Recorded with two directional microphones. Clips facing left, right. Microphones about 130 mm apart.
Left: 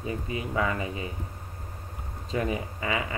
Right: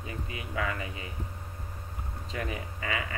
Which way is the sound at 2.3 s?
30° left (ahead or behind).